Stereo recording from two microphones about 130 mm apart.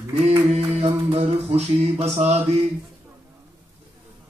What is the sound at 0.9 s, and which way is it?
Mantra, 40° right (ahead or behind).